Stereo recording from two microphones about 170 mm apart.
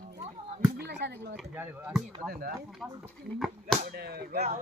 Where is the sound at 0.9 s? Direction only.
90° right.